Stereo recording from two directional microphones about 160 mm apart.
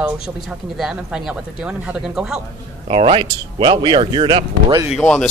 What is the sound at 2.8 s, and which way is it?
A man's voice, 35° right (ahead or behind).